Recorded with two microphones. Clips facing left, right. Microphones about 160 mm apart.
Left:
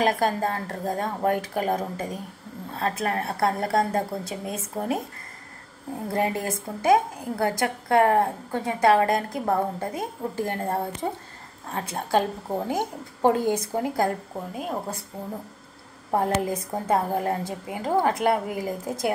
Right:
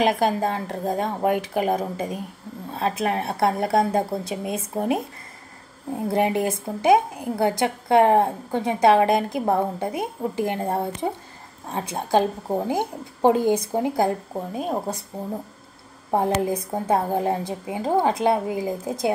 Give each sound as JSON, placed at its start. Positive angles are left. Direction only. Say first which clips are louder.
{"t": 0.0, "sound": "a woman's voice", "louder": "right 2 dB", "side_deg": -15}
{"t": 12.1, "sound": "a woman's voice", "louder": "right 3 dB", "side_deg": -15}
{"t": 16.1, "sound": "a woman's voice", "louder": "right 2 dB", "side_deg": -15}